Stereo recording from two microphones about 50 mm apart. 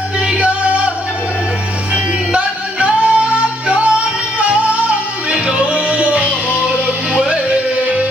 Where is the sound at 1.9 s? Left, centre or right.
Centre.